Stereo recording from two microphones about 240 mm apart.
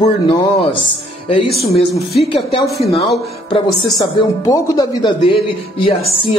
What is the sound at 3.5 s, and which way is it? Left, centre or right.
Speech, centre.